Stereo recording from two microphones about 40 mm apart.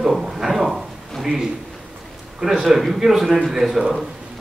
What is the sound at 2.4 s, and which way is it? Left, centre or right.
A man's voice, centre.